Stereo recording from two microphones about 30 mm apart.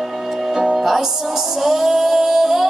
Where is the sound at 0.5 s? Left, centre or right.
Centre.